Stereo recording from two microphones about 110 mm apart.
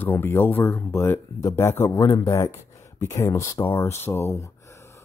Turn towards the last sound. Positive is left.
turn(degrees=25)  # may be behind; listen again after turning